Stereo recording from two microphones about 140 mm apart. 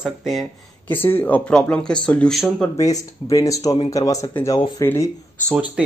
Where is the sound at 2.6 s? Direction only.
20° left (ahead or behind).